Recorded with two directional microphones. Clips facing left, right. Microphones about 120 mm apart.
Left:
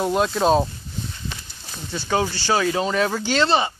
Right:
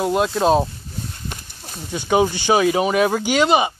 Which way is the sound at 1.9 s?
15° right (ahead or behind).